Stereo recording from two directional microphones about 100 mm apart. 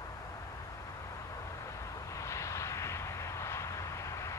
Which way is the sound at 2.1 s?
30° left (ahead or behind).